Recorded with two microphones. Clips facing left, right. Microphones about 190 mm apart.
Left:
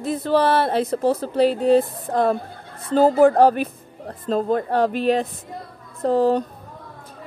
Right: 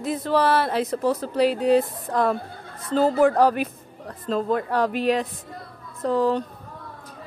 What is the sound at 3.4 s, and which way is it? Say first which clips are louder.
Music: left 4 dB; 30° left (ahead or behind).